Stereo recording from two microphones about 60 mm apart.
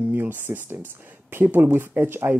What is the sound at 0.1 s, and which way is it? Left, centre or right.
Speech, right.